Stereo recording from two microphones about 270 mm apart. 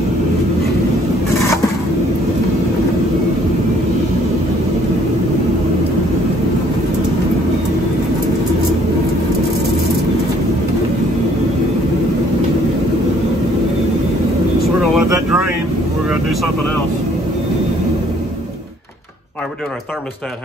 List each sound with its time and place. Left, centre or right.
15.0 s vehicle: centre